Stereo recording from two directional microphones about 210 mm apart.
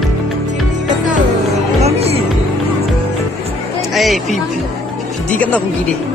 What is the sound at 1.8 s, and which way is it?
Music, 30° right (ahead or behind).